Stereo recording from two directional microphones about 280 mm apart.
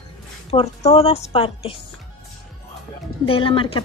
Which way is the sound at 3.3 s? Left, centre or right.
Centre.